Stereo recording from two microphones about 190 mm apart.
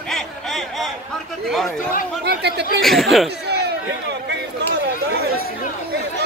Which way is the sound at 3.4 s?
60° right (ahead or behind).